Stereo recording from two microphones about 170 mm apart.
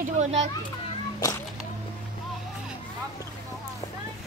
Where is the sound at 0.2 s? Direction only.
40° right (ahead or behind).